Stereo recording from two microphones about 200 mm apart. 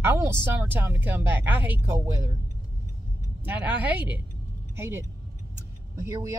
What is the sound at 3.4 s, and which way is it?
Speech, 10° right (ahead or behind).